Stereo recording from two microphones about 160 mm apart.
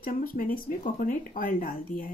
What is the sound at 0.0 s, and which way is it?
Speech, 60° left (ahead or behind).